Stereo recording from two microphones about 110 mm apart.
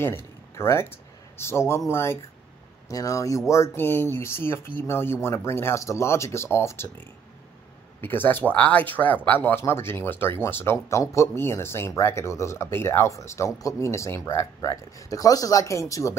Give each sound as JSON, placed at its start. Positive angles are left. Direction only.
{"t": 0.0, "sound": "speech", "side_deg": 20}
{"t": 8.0, "sound": "speech", "side_deg": 20}